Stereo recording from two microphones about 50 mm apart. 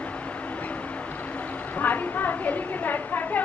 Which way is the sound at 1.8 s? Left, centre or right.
Left.